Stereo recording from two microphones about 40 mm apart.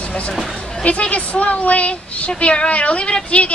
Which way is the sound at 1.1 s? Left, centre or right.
Left.